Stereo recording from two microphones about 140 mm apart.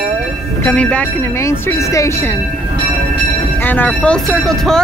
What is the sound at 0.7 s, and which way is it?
Speech, 10° left (ahead or behind).